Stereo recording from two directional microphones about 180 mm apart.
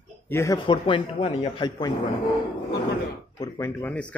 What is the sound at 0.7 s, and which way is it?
A man's voice, 30° left (ahead or behind).